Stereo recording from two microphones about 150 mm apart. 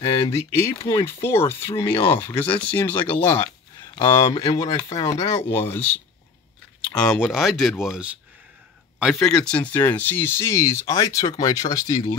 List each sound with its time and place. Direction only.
0.3 s speech: 15° left (ahead or behind)
4.3 s speech: 30° left (ahead or behind)
7.0 s speech: centre (ahead or behind)
9.0 s speech: centre (ahead or behind); by 12.2 s 25° left (ahead or behind)